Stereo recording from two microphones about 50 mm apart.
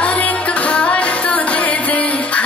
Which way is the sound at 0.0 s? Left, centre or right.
Left.